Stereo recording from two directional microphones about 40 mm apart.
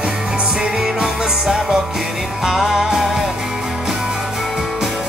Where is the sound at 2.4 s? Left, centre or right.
Centre.